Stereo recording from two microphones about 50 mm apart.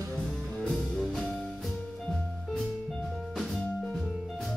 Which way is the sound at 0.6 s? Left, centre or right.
Centre.